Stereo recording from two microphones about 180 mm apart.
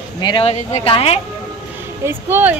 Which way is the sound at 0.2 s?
30° left (ahead or behind).